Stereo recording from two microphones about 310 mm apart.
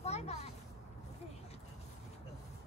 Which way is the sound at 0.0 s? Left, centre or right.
Left.